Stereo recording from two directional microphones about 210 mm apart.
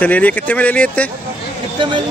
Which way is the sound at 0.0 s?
10° left (ahead or behind).